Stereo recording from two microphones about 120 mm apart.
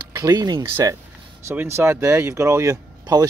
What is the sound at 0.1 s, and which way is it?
Speech, 30° right (ahead or behind).